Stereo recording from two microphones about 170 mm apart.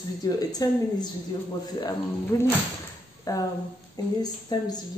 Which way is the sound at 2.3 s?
20° left (ahead or behind).